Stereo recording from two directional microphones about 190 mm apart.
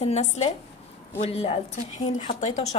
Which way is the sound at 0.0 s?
35° left (ahead or behind).